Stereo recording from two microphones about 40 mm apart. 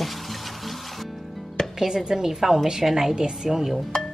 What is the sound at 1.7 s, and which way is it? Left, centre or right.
A woman's voice, centre.